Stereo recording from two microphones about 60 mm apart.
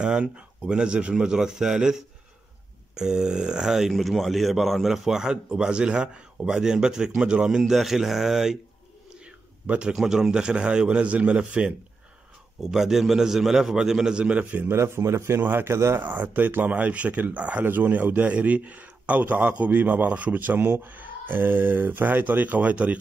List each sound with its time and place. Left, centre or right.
0.0 s a man's voice: centre
9.2 s a man's voice: centre
12.5 s a man's voice: centre
14.4 s speech: right
14.7 s a man's voice: right
16.0 s speech: right